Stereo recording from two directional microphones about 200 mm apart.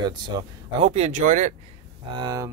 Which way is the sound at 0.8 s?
35° right (ahead or behind).